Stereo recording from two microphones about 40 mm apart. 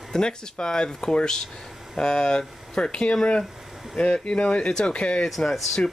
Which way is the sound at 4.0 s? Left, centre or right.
Left.